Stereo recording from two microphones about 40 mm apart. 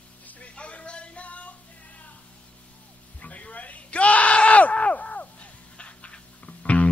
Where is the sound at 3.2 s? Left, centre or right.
Left.